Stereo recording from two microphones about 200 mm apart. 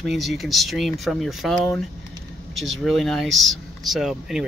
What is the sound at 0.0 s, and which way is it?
Speech, centre (ahead or behind).